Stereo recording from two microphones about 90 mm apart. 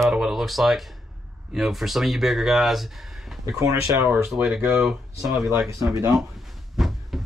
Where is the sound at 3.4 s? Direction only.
35° right (ahead or behind).